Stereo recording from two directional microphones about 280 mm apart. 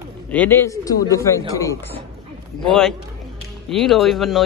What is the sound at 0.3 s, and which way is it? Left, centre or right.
Speech, centre.